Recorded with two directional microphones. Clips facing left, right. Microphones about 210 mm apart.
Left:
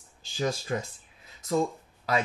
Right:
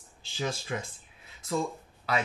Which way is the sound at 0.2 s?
40° left (ahead or behind).